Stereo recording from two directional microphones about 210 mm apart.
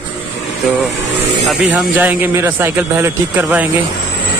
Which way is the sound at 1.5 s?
5° right (ahead or behind).